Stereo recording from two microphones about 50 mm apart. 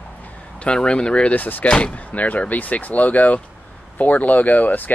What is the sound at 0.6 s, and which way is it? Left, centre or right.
Speech, centre.